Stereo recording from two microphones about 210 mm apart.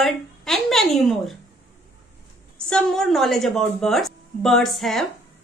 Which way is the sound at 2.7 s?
Centre (ahead or behind).